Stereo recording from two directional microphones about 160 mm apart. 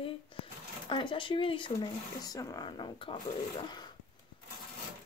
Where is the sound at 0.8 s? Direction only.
30° left (ahead or behind).